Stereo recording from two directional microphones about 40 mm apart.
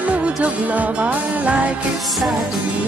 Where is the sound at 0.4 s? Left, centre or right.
Right.